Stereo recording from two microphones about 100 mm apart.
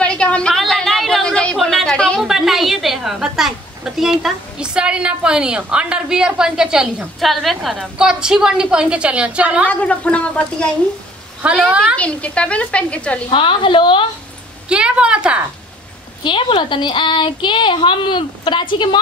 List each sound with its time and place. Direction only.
0.0 s a sound: 10° left (ahead or behind)
2.2 s a woman's voice: 5° right (ahead or behind)
9.7 s speech: 15° left (ahead or behind)
11.4 s a woman's voice: 10° right (ahead or behind)
12.0 s speech: 10° left (ahead or behind)
13.3 s a woman's voice: 60° left (ahead or behind)
14.7 s a woman's voice: 10° right (ahead or behind)
16.3 s a woman's voice: 60° left (ahead or behind)